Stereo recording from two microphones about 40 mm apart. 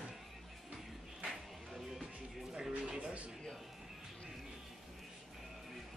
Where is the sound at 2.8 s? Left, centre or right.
Right.